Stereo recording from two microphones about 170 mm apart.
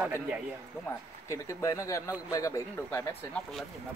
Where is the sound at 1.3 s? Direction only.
15° left (ahead or behind).